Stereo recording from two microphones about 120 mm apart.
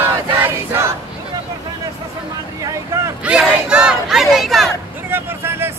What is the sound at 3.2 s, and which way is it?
Crowd, 5° right (ahead or behind).